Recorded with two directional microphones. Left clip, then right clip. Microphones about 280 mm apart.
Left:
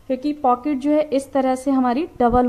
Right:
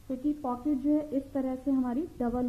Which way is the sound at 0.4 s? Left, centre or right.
Left.